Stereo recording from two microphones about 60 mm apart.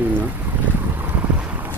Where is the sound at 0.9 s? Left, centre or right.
Right.